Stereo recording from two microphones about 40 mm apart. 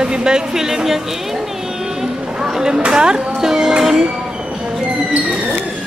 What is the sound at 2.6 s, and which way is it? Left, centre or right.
A woman's voice, right.